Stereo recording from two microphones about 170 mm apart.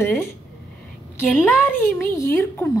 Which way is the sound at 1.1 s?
15° left (ahead or behind).